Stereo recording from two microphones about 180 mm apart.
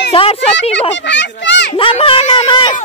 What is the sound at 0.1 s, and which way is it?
Speech, 30° left (ahead or behind).